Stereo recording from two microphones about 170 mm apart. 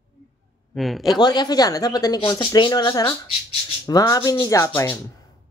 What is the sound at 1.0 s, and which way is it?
A woman's voice, 25° left (ahead or behind).